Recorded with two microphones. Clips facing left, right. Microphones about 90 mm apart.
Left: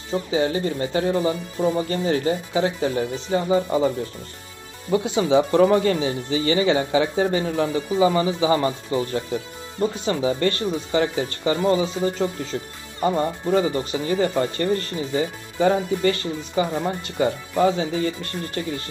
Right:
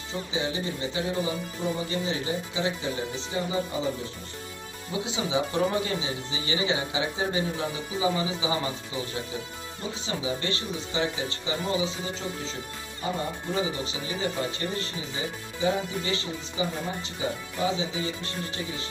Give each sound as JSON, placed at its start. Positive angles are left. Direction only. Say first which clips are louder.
{"t": 0.3, "sound": "speech", "louder": "left 8 dB", "side_deg": 45}
{"t": 4.9, "sound": "speech", "louder": "left 10 dB", "side_deg": 55}